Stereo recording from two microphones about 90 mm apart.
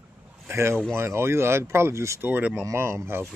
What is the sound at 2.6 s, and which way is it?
Speech, 30° right (ahead or behind).